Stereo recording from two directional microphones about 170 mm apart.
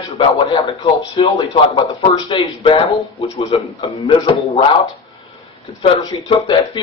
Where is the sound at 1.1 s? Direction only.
30° left (ahead or behind).